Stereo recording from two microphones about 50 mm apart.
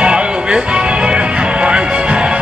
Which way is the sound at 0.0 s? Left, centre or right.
Centre.